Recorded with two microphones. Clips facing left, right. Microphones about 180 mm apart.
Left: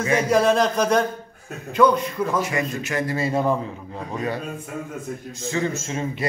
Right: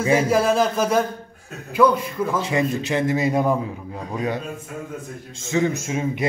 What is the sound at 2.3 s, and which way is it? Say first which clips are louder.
A man's voice: right 2 dB; 25° right (ahead or behind).